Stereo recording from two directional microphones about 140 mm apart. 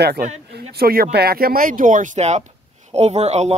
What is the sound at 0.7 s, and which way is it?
Speech, 90° right.